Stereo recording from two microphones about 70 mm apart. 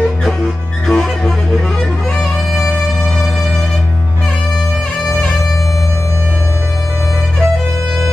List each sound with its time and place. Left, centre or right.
0.8 s music: centre